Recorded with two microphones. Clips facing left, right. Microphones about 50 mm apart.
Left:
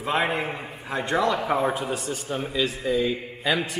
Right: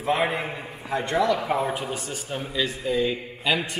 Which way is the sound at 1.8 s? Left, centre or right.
Right.